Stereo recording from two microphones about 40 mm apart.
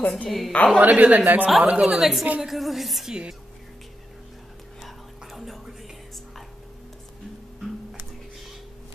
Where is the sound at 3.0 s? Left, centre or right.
Right.